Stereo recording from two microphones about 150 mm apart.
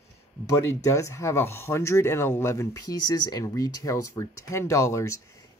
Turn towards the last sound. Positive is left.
turn(degrees=20)  # may be behind; listen again after turning